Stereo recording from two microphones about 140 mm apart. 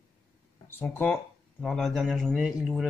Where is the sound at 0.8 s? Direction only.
15° left (ahead or behind).